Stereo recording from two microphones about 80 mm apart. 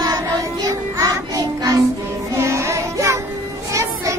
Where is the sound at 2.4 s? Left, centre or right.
Right.